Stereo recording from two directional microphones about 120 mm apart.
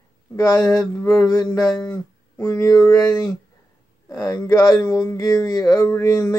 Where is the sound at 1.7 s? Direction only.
20° left (ahead or behind).